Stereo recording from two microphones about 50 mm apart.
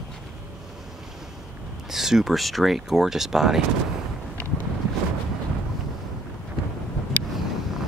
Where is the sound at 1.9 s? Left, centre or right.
Centre.